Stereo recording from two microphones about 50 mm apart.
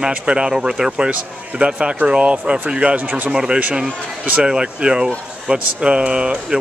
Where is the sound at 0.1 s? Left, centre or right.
Centre.